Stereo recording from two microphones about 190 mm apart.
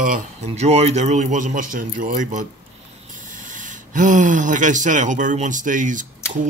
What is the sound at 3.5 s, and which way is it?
Speech, 40° right (ahead or behind).